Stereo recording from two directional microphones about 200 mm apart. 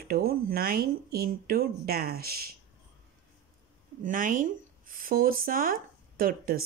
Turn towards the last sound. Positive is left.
turn(degrees=-45)  # may be behind; listen again after turning